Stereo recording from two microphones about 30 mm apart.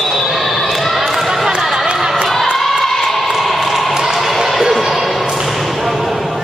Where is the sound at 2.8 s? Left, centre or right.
Centre.